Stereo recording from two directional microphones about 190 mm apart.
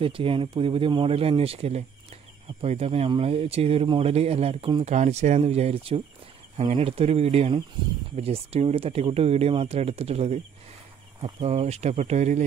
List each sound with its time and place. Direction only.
0.0 s speech: 30° right (ahead or behind)